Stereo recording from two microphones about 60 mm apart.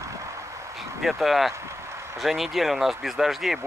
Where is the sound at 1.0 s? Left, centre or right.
Centre.